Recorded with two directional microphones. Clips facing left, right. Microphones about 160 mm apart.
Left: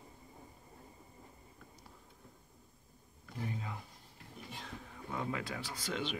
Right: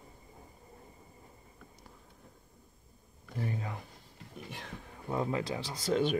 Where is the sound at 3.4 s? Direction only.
60° right (ahead or behind).